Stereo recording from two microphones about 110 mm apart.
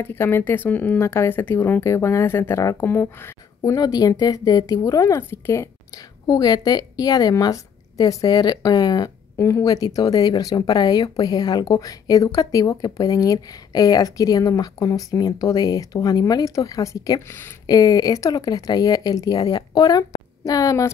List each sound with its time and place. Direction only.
0.0 s speech: 20° left (ahead or behind)
3.7 s speech: 35° left (ahead or behind)
17.6 s speech: 35° left (ahead or behind)